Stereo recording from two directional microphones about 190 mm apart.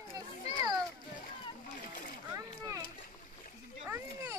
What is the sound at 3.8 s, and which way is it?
Speech, 10° right (ahead or behind).